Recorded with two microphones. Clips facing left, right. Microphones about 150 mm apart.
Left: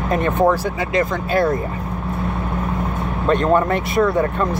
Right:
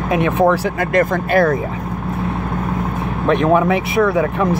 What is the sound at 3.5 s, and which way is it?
Speech, 90° right.